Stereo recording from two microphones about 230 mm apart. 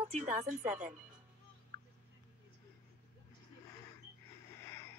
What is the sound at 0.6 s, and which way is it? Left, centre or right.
Speech, right.